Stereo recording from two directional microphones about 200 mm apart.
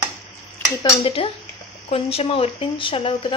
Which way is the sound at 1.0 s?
30° left (ahead or behind).